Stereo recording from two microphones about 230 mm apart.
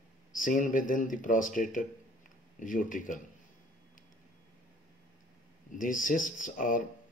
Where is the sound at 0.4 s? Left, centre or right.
Left.